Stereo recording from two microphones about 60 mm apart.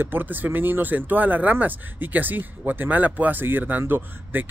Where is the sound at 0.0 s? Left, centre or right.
Right.